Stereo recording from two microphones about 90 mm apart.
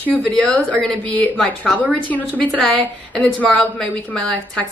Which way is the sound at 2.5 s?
5° left (ahead or behind).